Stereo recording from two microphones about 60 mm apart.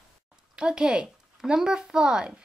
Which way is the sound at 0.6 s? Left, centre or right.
Centre.